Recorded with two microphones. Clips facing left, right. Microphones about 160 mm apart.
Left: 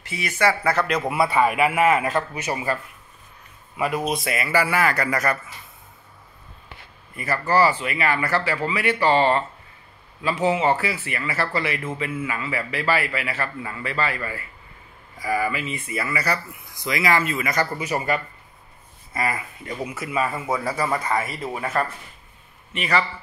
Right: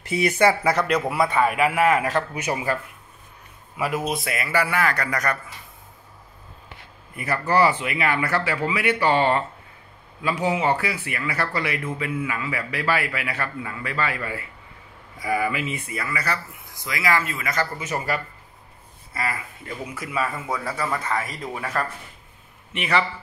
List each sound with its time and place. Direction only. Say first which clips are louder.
0.1 s speech: right 9 dB; 35° right (ahead or behind)
0.4 s speech: left 1 dB; 20° right (ahead or behind)
1.1 s speech: left 4 dB; 5° left (ahead or behind)
2.3 s speech: right 1 dB; 15° right (ahead or behind)
3.7 s speech: left 1 dB; 5° right (ahead or behind)
7.2 s speech: even; 15° right (ahead or behind)
10.2 s speech: left 2 dB; centre (ahead or behind)
15.7 s a man's voice: left 2 dB; centre (ahead or behind)
16.8 s speech: left 2 dB; 20° left (ahead or behind)
19.8 s a man's voice: left 2 dB; 10° left (ahead or behind)